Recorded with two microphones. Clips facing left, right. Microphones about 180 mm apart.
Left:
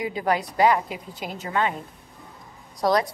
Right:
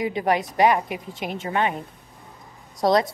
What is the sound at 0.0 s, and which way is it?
A woman's voice, 25° right (ahead or behind).